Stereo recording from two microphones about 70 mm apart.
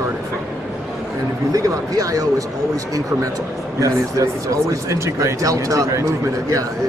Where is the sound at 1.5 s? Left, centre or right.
Right.